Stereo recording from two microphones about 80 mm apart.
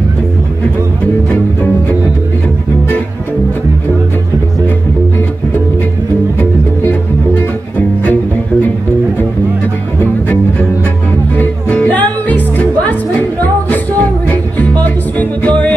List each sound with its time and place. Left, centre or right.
11.3 s music: centre
14.3 s music: centre